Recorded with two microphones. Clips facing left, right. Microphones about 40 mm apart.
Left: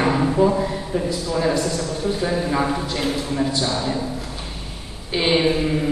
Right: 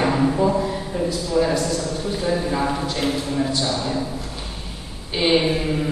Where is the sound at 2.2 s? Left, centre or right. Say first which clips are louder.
Right 1 dB; centre.